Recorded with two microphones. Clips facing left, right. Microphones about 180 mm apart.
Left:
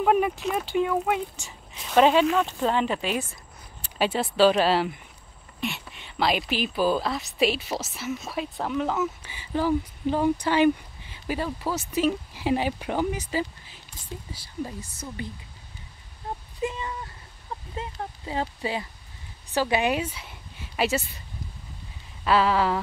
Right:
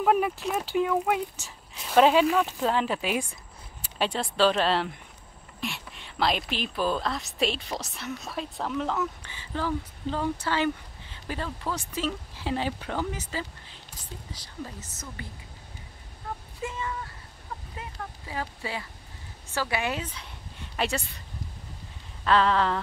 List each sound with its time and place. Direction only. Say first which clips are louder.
0.0 s speech: left 2 dB; centre (ahead or behind)
4.0 s a woman's voice: left 4 dB; 5° left (ahead or behind)
16.6 s a sound: left 3 dB; 20° left (ahead or behind)
17.7 s speech: left 8 dB; 25° left (ahead or behind); by 21.0 s 5° left (ahead or behind)
22.2 s a woman's voice: left 1 dB; 10° left (ahead or behind)